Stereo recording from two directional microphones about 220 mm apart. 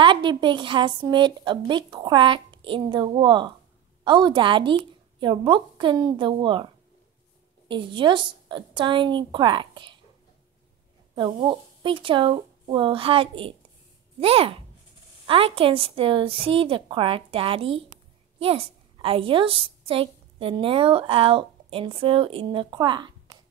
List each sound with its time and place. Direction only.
0.0 s speech: 20° right (ahead or behind)
11.1 s a woman's voice: 20° right (ahead or behind)